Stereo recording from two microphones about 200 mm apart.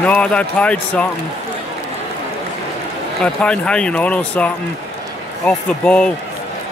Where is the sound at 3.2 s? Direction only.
5° left (ahead or behind).